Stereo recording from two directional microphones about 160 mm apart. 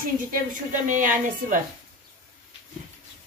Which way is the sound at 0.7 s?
55° right (ahead or behind).